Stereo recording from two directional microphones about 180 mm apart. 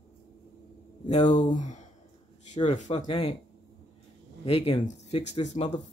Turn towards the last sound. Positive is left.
turn(degrees=40)  # may be behind; listen again after turning